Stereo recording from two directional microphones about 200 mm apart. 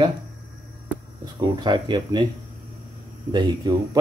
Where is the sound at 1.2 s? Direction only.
20° right (ahead or behind).